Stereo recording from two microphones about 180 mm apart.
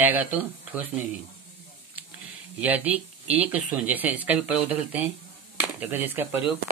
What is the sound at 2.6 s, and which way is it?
Speech, 10° right (ahead or behind).